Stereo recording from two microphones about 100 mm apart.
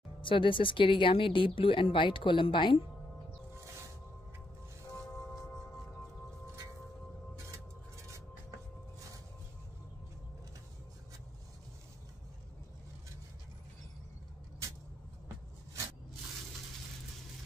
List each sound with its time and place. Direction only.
0.2 s speech: 55° left (ahead or behind)